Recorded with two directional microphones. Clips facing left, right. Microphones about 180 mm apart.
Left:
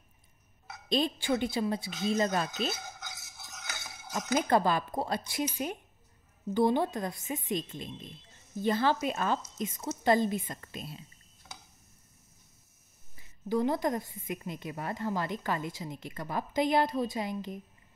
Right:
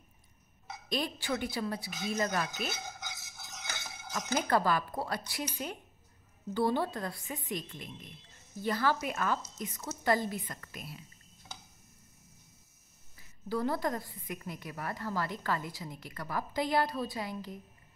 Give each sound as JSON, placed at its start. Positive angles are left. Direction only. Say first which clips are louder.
{"t": 0.8, "sound": "a woman's voice", "louder": "left 5 dB", "side_deg": 25}
{"t": 4.1, "sound": "a woman's voice", "louder": "left 3 dB", "side_deg": 20}
{"t": 13.5, "sound": "a woman's voice", "louder": "left 4 dB", "side_deg": 20}